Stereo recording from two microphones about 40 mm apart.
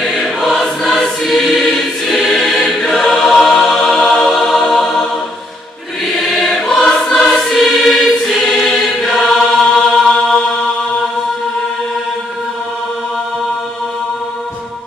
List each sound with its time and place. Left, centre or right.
0.0 s choir: centre
6.1 s music: centre
7.7 s choir: centre
10.0 s chant: centre